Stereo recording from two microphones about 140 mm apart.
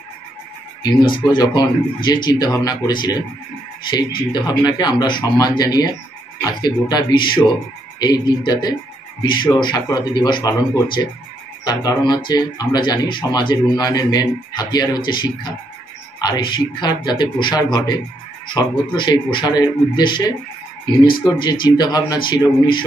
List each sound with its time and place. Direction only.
1.3 s speech: 30° left (ahead or behind)
4.3 s speech: 30° left (ahead or behind)